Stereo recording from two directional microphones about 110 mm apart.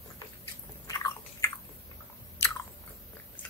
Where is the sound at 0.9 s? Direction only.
30° left (ahead or behind).